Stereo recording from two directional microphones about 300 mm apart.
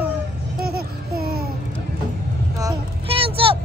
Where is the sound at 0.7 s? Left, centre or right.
Right.